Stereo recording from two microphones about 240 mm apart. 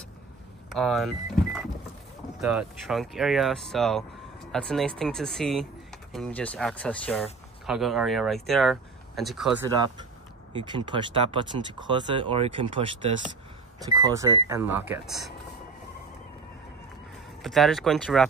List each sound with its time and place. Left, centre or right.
0.7 s speech: centre
10.5 s speech: centre
17.4 s speech: centre